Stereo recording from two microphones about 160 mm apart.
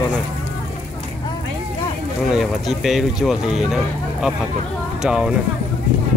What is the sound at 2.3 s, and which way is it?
Speech, centre (ahead or behind).